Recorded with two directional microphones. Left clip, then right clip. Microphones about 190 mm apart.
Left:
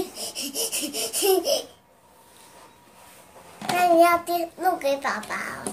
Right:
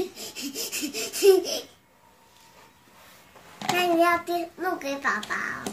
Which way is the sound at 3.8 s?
15° left (ahead or behind).